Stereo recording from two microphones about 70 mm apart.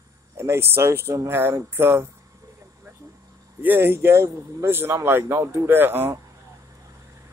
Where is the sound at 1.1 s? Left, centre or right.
Right.